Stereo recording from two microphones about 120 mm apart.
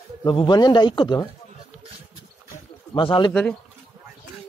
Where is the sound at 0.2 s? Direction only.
40° left (ahead or behind).